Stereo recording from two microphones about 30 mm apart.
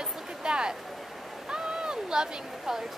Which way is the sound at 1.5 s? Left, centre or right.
Right.